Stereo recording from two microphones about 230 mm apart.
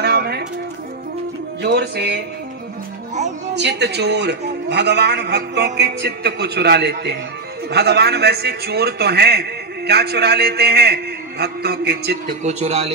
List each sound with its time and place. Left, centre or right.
0.0 s music: right
1.6 s a man's voice: right
3.5 s a man's voice: right
12.4 s a man's voice: right